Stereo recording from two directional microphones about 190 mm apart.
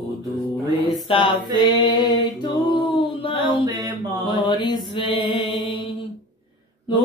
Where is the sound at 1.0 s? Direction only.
25° left (ahead or behind).